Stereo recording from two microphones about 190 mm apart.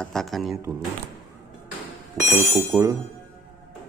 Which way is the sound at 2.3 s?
15° right (ahead or behind).